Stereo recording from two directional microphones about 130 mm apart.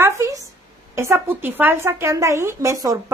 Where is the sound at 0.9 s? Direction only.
20° right (ahead or behind).